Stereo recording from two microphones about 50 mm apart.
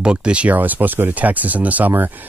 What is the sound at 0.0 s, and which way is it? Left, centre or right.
Speech, right.